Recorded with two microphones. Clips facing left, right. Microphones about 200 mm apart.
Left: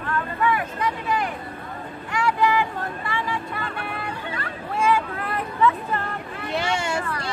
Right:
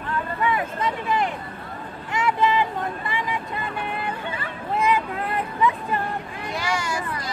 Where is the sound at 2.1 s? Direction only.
20° right (ahead or behind).